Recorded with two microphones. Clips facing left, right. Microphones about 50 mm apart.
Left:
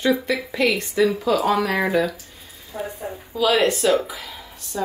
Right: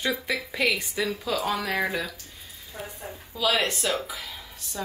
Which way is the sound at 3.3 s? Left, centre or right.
Centre.